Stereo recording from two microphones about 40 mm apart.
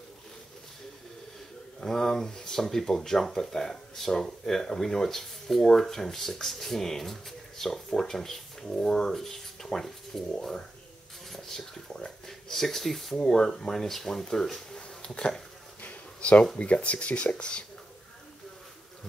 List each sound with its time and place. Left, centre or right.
1.8 s speech: centre
11.2 s speech: centre
15.1 s a sound: left
16.5 s speech: left